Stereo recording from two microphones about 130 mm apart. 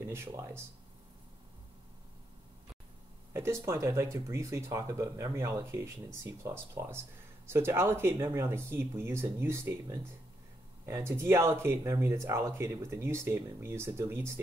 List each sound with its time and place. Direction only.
0.0 s speech: 20° right (ahead or behind)
3.6 s speech: 25° right (ahead or behind)